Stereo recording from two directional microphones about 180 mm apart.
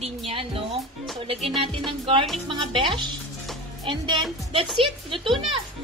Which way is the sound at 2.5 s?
30° right (ahead or behind).